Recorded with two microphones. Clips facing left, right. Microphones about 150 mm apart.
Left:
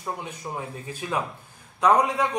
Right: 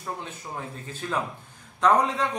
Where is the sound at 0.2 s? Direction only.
15° left (ahead or behind).